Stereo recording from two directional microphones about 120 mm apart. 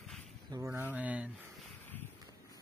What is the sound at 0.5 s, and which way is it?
Speech, 20° right (ahead or behind).